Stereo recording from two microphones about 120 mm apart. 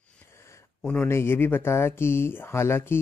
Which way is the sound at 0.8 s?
10° left (ahead or behind).